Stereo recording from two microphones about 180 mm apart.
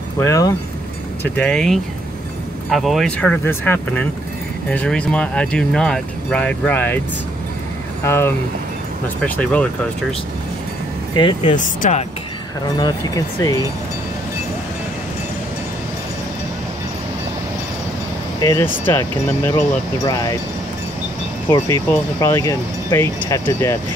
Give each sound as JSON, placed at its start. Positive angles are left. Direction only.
{"t": 0.2, "sound": "speech", "side_deg": 20}
{"t": 1.2, "sound": "speech", "side_deg": 5}
{"t": 8.0, "sound": "speech", "side_deg": 15}
{"t": 11.4, "sound": "speech", "side_deg": 45}
{"t": 12.7, "sound": "speech", "side_deg": 20}
{"t": 18.4, "sound": "speech", "side_deg": 15}
{"t": 21.5, "sound": "speech", "side_deg": 15}